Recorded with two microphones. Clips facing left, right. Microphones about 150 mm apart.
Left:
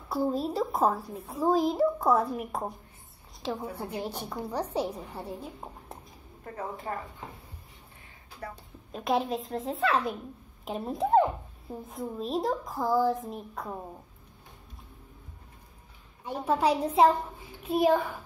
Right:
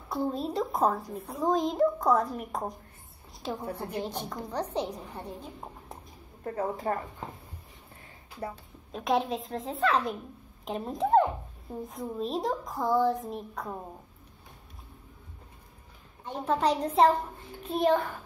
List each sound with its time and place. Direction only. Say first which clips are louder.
0.1 s a child's voice: left 2 dB; 5° left (ahead or behind)
3.7 s a woman's voice: right 1 dB; 10° left (ahead or behind)
6.4 s speech: right 6 dB; 40° right (ahead or behind)
8.9 s a child's voice: even; centre (ahead or behind)
16.3 s a woman's voice: left 1 dB; 10° left (ahead or behind)